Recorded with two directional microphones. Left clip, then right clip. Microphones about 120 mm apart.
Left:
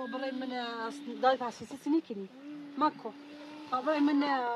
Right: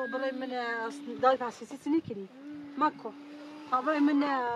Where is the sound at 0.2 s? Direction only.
10° right (ahead or behind).